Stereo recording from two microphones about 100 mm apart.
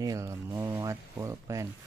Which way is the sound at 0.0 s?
35° right (ahead or behind).